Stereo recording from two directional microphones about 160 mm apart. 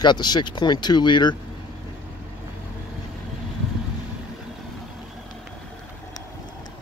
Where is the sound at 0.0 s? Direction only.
25° left (ahead or behind).